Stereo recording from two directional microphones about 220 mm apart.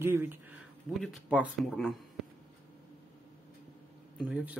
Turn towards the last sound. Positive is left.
turn(degrees=-5)  # may be behind; listen again after turning